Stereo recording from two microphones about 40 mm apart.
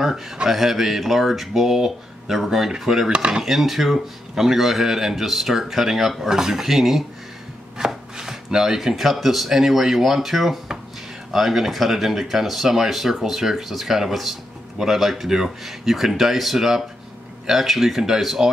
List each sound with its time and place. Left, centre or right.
0.5 s speech: centre
3.1 s dishes: right
3.4 s speech: centre
7.7 s chopping: centre
11.3 s speech: centre